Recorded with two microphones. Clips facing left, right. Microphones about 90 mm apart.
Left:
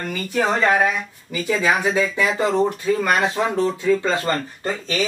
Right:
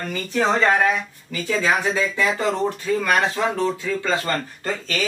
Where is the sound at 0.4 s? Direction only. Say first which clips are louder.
Even; 15° left (ahead or behind).